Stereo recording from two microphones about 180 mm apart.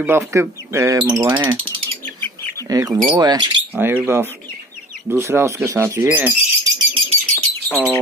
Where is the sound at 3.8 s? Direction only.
10° right (ahead or behind).